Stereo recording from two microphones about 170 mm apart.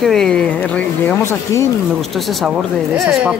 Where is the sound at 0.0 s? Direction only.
Centre (ahead or behind).